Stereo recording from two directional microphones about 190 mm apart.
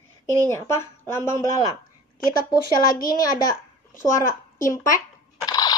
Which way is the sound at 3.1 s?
20° left (ahead or behind).